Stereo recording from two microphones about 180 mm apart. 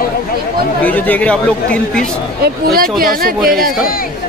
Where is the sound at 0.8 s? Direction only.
10° left (ahead or behind).